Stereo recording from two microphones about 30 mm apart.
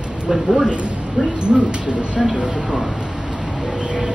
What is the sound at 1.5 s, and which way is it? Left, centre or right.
Speech, right.